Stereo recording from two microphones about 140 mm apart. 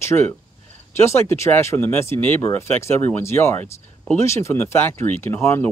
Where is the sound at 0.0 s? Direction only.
15° left (ahead or behind).